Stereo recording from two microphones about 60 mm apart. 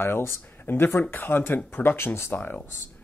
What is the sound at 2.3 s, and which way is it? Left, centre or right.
Speech, left.